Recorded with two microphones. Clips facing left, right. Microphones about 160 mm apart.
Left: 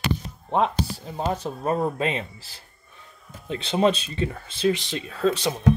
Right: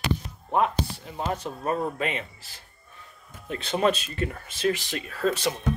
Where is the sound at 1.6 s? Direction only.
30° left (ahead or behind).